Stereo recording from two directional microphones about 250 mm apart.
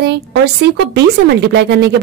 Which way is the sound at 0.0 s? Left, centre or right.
Right.